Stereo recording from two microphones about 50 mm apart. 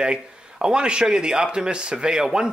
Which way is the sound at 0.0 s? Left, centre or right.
Centre.